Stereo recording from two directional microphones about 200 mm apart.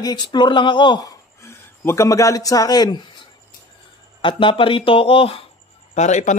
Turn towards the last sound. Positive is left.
turn(degrees=35)  # may be behind; listen again after turning